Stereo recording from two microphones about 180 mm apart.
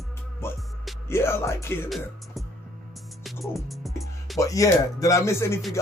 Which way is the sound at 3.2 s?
Centre (ahead or behind).